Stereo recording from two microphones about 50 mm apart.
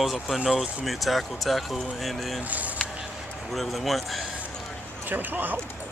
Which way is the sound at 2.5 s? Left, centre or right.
Right.